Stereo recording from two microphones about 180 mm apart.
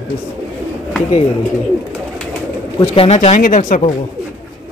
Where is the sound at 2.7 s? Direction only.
30° left (ahead or behind).